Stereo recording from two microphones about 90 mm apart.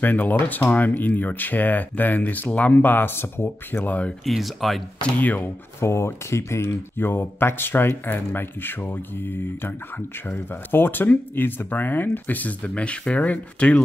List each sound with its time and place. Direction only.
0.0 s speech: 20° left (ahead or behind)
4.3 s speech: centre (ahead or behind)
5.0 s speech: 20° left (ahead or behind)
5.8 s speech: 30° left (ahead or behind); by 13.8 s 15° left (ahead or behind)